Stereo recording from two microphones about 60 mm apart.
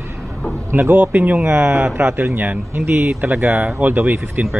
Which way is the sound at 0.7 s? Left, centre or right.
Right.